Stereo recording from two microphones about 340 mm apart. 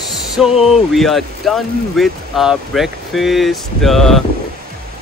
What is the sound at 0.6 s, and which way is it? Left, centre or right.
Speech, centre.